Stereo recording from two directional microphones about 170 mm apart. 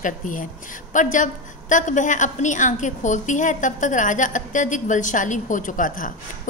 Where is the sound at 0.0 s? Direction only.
50° left (ahead or behind).